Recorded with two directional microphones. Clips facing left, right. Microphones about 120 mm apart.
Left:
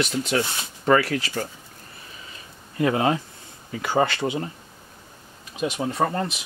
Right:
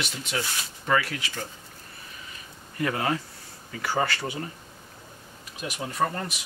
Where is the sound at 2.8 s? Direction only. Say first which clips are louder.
Left 6 dB; 25° left (ahead or behind).